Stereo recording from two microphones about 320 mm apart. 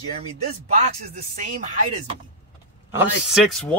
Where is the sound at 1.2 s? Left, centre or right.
Right.